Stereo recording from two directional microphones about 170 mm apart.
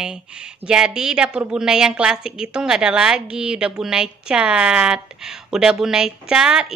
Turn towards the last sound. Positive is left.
turn(degrees=-5)  # may be behind; listen again after turning